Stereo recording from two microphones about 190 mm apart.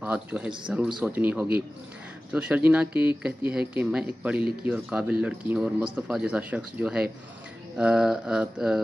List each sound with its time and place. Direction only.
0.0 s speech: 10° right (ahead or behind)